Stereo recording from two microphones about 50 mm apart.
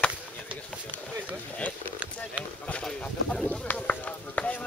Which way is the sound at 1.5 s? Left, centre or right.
Left.